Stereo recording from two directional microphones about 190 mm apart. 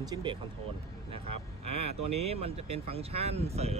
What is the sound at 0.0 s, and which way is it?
Speech, 20° right (ahead or behind).